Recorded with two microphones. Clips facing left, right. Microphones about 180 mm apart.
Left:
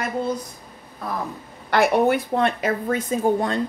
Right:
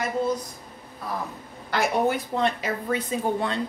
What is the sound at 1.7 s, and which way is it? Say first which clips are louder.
Speech: left 5 dB; 60° left (ahead or behind).